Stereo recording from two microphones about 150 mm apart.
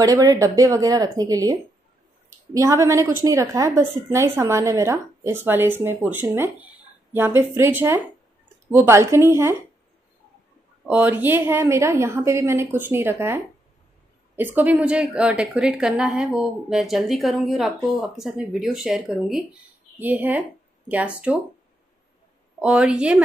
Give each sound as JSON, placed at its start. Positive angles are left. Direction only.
{"t": 0.0, "sound": "a woman's voice", "side_deg": -25}
{"t": 10.9, "sound": "a woman's voice", "side_deg": -10}
{"t": 22.6, "sound": "a woman's voice", "side_deg": -5}